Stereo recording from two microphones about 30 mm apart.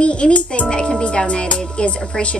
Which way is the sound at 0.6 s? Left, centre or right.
Left.